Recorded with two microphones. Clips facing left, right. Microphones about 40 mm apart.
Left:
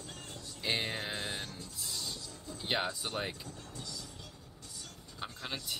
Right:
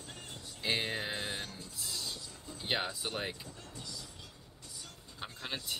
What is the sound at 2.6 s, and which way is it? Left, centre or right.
Speech, centre.